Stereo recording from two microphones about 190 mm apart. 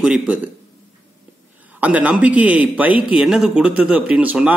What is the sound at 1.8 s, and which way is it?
Speech, 5° right (ahead or behind).